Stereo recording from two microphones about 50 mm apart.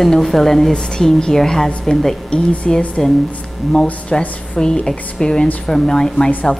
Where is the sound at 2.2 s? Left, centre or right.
Left.